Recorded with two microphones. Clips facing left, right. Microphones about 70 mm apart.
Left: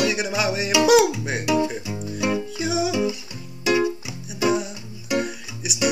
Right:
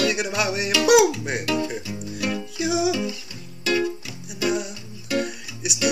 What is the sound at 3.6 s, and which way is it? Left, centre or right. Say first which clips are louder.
Music: left 3 dB; centre.